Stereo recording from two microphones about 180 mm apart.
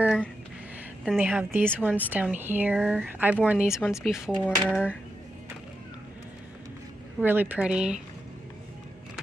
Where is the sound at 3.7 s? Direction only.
15° left (ahead or behind).